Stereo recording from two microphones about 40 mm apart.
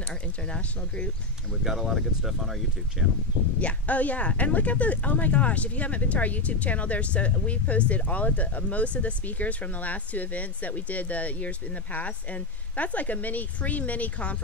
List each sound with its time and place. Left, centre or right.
0.0 s speech: left
1.5 s speech: centre
3.6 s speech: left